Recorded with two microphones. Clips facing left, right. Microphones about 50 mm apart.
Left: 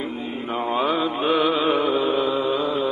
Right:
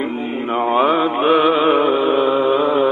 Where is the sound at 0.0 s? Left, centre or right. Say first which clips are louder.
Right 7 dB; right.